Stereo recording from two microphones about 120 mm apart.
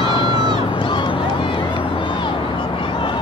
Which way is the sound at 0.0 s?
45° left (ahead or behind).